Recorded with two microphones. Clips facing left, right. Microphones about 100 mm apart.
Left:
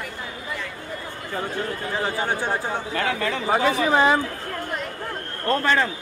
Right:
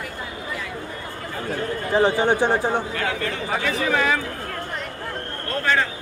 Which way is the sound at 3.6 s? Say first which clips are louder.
Left 3 dB; 30° left (ahead or behind).